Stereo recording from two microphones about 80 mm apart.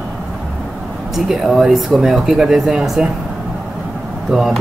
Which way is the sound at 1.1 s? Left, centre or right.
Centre.